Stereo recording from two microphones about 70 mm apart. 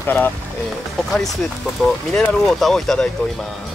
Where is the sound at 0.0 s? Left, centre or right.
Left.